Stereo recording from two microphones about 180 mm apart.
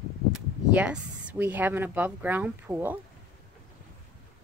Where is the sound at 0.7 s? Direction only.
5° right (ahead or behind).